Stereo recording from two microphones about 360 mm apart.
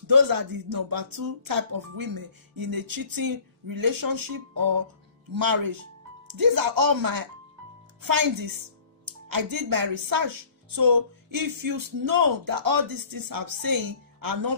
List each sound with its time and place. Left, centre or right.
0.0 s a woman's voice: right